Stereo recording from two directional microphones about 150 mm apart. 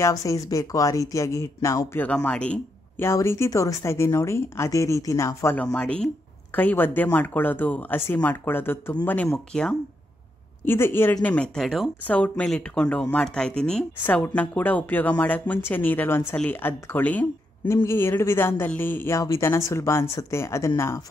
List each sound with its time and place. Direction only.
0.0 s a woman's voice: 20° left (ahead or behind)
2.0 s a woman's voice: 10° left (ahead or behind)